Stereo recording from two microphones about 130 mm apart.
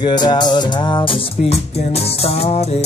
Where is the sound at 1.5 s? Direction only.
50° left (ahead or behind).